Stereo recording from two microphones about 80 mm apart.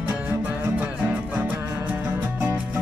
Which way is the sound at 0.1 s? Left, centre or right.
Right.